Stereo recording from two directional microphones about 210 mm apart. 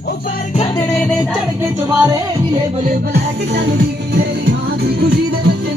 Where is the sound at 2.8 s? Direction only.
45° right (ahead or behind).